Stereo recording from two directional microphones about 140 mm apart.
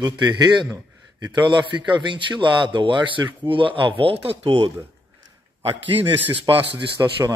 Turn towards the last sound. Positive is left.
turn(degrees=-25)  # may be behind; listen again after turning